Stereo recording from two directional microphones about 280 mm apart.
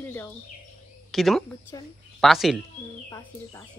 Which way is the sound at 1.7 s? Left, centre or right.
Centre.